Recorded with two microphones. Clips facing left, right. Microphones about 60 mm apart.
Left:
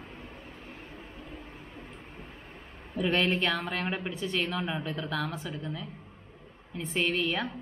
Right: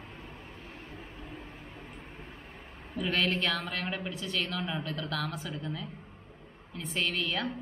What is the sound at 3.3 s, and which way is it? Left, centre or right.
A woman's voice, centre.